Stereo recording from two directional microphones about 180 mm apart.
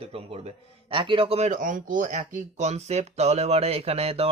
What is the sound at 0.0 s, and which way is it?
A man's voice, 35° right (ahead or behind).